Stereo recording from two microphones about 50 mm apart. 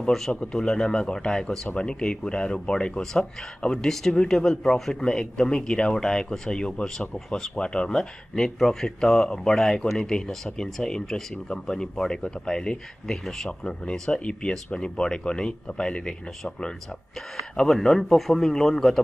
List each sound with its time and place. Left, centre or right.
0.3 s speech: centre
3.8 s speech: centre